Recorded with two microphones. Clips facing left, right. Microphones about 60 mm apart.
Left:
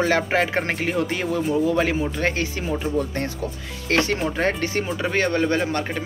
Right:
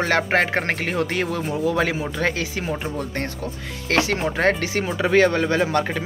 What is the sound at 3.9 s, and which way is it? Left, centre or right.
Speech, right.